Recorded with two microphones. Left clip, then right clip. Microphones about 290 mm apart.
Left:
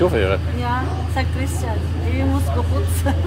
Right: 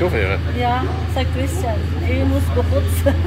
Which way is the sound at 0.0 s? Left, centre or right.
Left.